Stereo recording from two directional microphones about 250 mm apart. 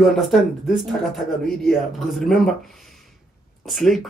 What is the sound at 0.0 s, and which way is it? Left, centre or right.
Speech, centre.